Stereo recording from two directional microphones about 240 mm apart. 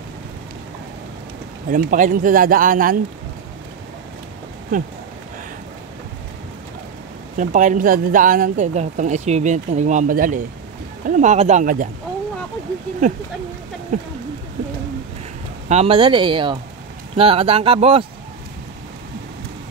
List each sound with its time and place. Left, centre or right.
1.7 s speech: right
7.3 s speech: right
13.9 s speech: right
15.7 s speech: right